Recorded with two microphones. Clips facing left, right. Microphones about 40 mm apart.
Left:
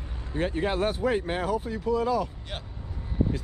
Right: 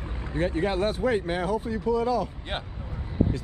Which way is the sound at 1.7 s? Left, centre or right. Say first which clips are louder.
Right 1 dB; centre.